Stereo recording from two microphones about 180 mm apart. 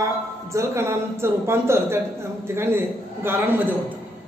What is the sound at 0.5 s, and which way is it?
A man's voice, 15° right (ahead or behind).